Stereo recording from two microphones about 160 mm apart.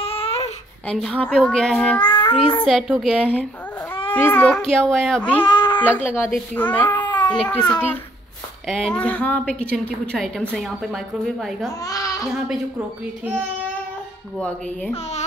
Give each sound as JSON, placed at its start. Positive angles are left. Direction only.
{"t": 0.0, "sound": "baby cry", "side_deg": 35}
{"t": 0.8, "sound": "speech", "side_deg": 5}
{"t": 2.0, "sound": "child singing", "side_deg": 30}
{"t": 2.6, "sound": "speech", "side_deg": 0}
{"t": 4.1, "sound": "speech", "side_deg": 10}
{"t": 5.4, "sound": "a sound", "side_deg": 30}
{"t": 5.8, "sound": "a woman's voice", "side_deg": 10}
{"t": 7.0, "sound": "baby cry", "side_deg": 30}
{"t": 7.2, "sound": "a woman's voice", "side_deg": 5}
{"t": 8.6, "sound": "a woman's voice", "side_deg": 5}
{"t": 11.8, "sound": "speech", "side_deg": 20}
{"t": 14.4, "sound": "a woman's voice", "side_deg": 5}